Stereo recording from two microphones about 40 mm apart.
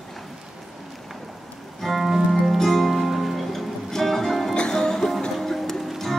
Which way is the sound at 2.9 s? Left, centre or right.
Centre.